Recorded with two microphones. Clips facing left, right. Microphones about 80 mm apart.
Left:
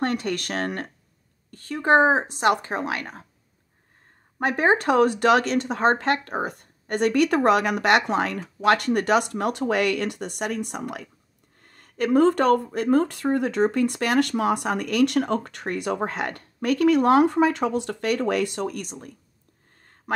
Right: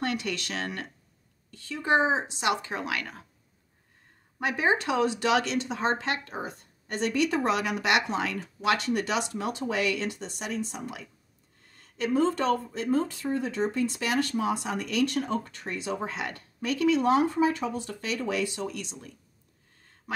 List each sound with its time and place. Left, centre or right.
0.0 s speech: left
4.4 s speech: left